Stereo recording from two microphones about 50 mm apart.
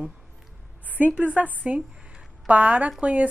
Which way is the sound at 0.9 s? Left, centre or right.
Right.